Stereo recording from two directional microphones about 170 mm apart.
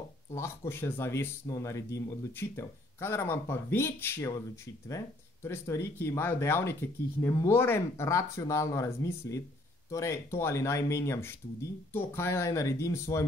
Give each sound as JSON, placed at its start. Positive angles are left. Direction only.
{"t": 0.3, "sound": "speech", "side_deg": 15}